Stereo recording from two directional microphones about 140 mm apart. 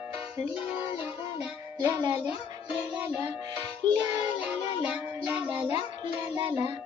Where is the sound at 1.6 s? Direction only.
20° right (ahead or behind).